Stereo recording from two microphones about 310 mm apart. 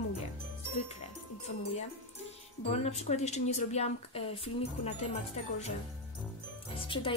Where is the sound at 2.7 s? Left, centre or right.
Left.